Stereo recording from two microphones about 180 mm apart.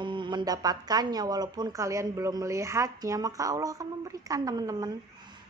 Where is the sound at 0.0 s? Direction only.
25° right (ahead or behind).